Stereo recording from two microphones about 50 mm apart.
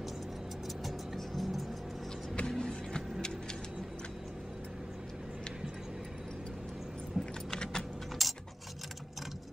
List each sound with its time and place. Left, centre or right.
0.8 s music: centre
2.4 s vehicle: centre
7.2 s keys jangling: centre
7.5 s typing: centre
8.2 s keys jangling: centre